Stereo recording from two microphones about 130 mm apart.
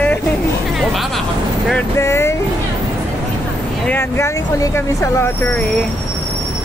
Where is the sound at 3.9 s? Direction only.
20° left (ahead or behind).